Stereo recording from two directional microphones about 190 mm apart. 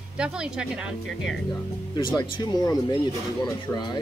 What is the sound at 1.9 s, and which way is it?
Speech, 20° left (ahead or behind).